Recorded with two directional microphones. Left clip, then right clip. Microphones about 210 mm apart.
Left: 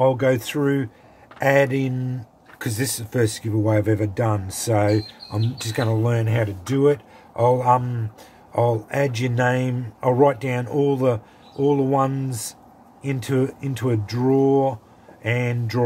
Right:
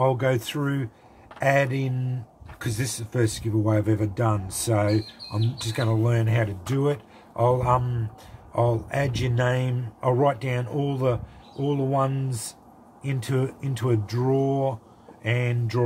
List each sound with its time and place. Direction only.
0.0 s speech: 40° left (ahead or behind)